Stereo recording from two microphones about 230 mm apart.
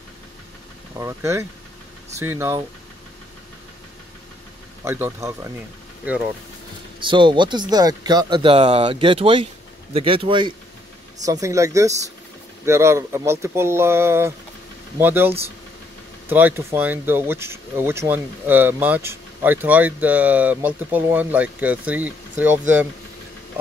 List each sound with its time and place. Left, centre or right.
0.9 s speech: centre
4.8 s speech: centre
7.0 s speech: right